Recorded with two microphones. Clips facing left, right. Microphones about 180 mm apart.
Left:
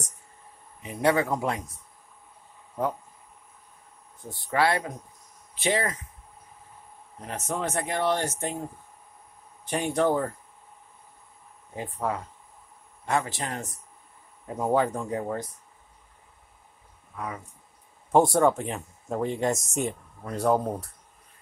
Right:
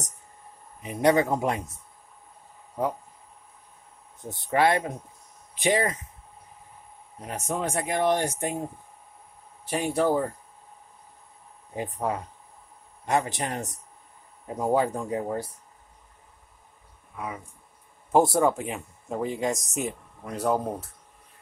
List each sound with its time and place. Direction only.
0.8 s speech: 20° right (ahead or behind)
4.2 s speech: 20° right (ahead or behind)
7.2 s speech: 10° right (ahead or behind)
9.7 s speech: 5° right (ahead or behind)
11.7 s speech: 20° right (ahead or behind)
18.1 s speech: 5° right (ahead or behind)